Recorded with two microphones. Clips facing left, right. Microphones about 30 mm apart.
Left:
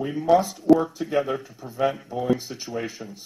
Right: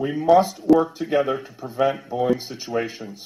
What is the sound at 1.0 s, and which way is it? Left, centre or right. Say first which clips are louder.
Speech: right 4 dB; centre.